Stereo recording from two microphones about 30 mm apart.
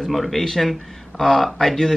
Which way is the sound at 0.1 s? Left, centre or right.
Centre.